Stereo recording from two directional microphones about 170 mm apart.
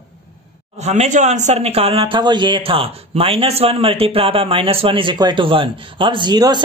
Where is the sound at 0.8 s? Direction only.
40° right (ahead or behind).